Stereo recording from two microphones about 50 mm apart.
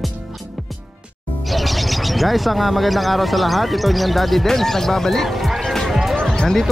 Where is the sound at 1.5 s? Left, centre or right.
Centre.